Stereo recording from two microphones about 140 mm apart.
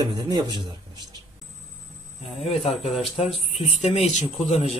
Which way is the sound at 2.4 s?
50° left (ahead or behind).